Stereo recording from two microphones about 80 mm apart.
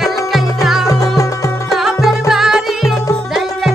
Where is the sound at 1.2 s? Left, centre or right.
Left.